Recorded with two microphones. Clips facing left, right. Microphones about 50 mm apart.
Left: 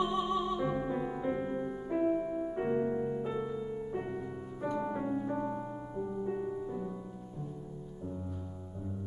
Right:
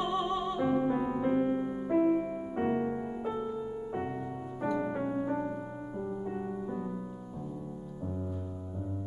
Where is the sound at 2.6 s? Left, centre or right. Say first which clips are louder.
Right 2 dB; right.